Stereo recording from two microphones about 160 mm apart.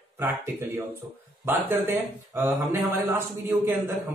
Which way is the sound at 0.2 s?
15° right (ahead or behind).